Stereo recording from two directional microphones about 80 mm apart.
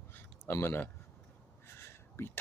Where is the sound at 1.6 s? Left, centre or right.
Left.